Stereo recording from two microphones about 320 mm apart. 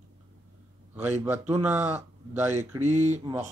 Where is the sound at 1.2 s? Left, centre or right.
Centre.